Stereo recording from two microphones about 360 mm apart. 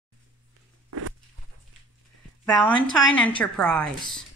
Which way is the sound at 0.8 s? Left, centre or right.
Right.